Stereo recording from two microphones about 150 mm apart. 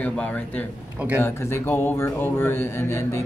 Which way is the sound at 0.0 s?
10° left (ahead or behind).